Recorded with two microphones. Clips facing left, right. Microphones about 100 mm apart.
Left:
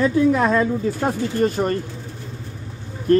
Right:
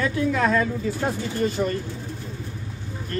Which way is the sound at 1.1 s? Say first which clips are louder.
Left 6 dB; 50° left (ahead or behind).